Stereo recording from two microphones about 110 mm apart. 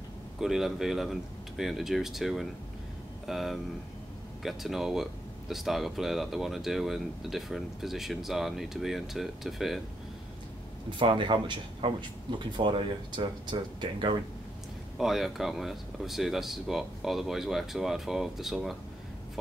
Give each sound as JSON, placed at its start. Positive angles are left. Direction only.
{"t": 0.4, "sound": "speech", "side_deg": -5}
{"t": 11.0, "sound": "speech", "side_deg": -50}
{"t": 15.0, "sound": "speech", "side_deg": 0}